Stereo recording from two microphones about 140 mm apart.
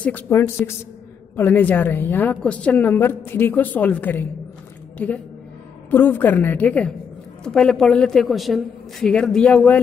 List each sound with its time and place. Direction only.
0.0 s a woman's voice: 15° left (ahead or behind)